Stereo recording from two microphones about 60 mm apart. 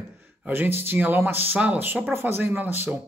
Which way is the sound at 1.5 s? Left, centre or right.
Right.